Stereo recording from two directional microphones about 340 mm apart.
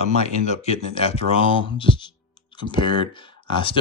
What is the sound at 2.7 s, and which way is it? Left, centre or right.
Speech, centre.